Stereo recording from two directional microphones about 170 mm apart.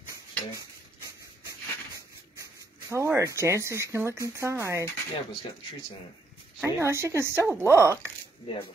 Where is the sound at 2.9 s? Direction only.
15° right (ahead or behind).